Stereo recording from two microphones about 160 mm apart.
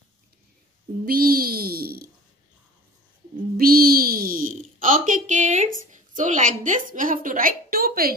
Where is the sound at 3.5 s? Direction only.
70° right (ahead or behind).